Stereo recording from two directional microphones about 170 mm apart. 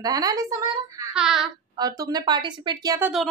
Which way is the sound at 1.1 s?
5° right (ahead or behind).